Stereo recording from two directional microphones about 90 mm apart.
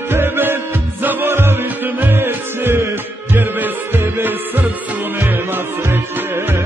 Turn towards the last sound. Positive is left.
turn(degrees=-25)  # may be behind; listen again after turning